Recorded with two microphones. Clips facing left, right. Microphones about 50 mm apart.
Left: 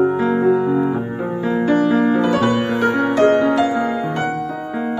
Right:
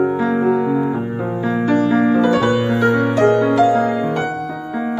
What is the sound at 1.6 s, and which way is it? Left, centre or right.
Music, left.